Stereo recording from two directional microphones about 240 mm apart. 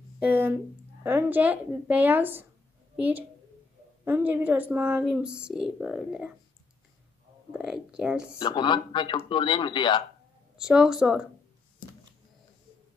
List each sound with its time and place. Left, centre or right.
0.2 s speech: centre
4.0 s speech: centre
7.5 s speech: centre
8.4 s a man's voice: centre
10.6 s speech: centre